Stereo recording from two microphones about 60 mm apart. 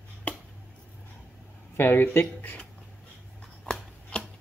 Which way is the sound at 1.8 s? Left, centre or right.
Left.